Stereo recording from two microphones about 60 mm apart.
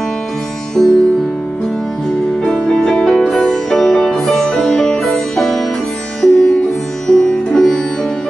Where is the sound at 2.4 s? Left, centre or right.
Centre.